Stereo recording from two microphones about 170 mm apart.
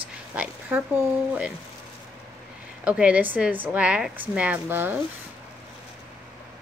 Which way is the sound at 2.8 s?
5° right (ahead or behind).